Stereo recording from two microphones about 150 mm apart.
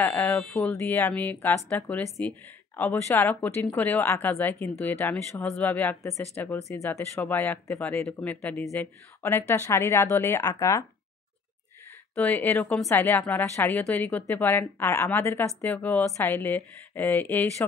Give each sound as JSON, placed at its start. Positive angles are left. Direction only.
{"t": 0.0, "sound": "a woman's voice", "side_deg": 10}
{"t": 12.2, "sound": "a woman's voice", "side_deg": 15}